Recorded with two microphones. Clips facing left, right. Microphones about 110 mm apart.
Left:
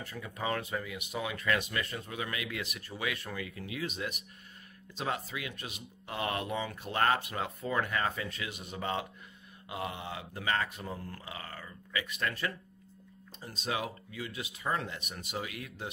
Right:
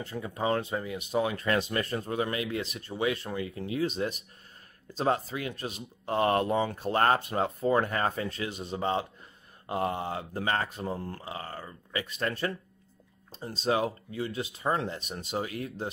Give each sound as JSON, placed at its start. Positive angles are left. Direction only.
{"t": 0.0, "sound": "speech", "side_deg": -30}
{"t": 9.7, "sound": "speech", "side_deg": -40}